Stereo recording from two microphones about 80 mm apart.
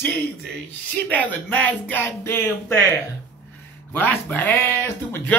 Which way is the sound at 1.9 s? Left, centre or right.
Left.